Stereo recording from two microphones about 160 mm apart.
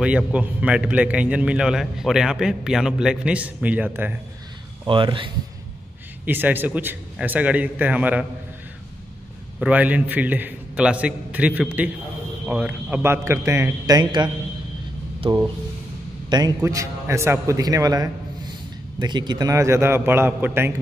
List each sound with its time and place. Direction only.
0.0 s a man's voice: 5° right (ahead or behind)
4.8 s speech: 30° right (ahead or behind)
6.2 s a man's voice: 10° right (ahead or behind)
9.6 s a man's voice: 10° right (ahead or behind)